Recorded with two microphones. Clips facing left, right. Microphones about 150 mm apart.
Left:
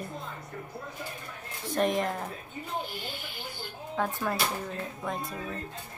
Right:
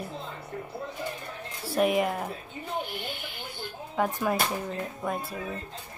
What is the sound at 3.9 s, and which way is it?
Speech, 15° right (ahead or behind).